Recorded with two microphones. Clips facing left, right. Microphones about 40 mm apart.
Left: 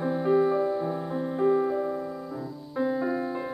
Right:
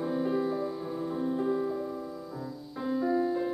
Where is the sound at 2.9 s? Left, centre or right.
Left.